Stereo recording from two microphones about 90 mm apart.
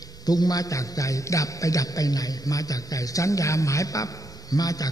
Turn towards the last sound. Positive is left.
turn(degrees=45)  # may be behind; listen again after turning